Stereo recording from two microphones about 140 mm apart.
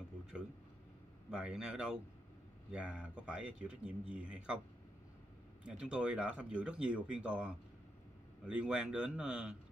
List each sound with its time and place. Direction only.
1.3 s speech: 5° right (ahead or behind)
5.7 s speech: 5° right (ahead or behind)